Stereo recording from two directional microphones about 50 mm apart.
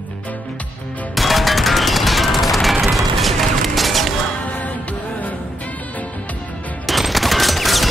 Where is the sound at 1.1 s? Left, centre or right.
Centre.